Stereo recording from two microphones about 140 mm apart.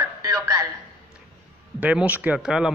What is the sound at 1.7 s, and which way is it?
Speech, 10° right (ahead or behind).